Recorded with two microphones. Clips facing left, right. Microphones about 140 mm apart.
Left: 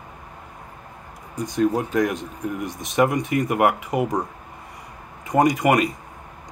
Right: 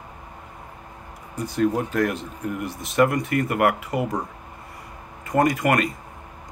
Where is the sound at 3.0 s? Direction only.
10° left (ahead or behind).